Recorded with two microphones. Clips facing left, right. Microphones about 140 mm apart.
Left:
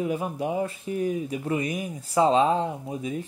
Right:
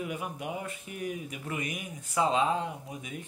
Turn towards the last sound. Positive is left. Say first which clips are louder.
# left 10 dB
turn(degrees=30)  # may be behind; listen again after turning